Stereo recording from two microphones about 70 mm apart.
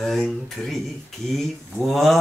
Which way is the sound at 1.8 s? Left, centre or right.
Centre.